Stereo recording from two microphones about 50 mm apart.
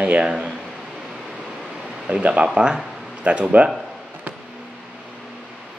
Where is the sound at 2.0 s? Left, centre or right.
Right.